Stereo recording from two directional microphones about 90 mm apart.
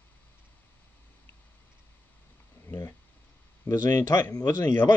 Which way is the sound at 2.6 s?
30° left (ahead or behind).